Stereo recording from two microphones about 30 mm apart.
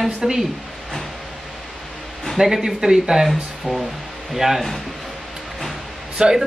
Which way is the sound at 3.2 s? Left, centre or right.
Centre.